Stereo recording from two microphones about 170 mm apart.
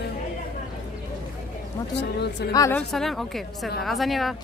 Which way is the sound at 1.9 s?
75° left (ahead or behind).